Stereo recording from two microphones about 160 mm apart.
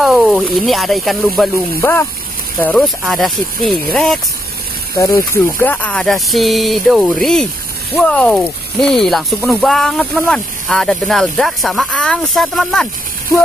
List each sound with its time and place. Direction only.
0.0 s speech: centre (ahead or behind)
1.8 s speech: 10° left (ahead or behind)
4.9 s speech: 20° left (ahead or behind)
5.6 s speech: 10° left (ahead or behind)